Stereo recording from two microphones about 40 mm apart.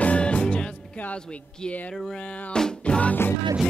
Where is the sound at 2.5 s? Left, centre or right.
Centre.